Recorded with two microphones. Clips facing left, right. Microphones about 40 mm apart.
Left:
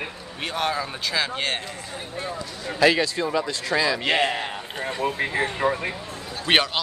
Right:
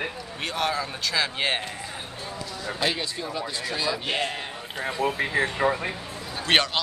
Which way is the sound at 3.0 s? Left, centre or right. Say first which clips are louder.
Left 7 dB; left.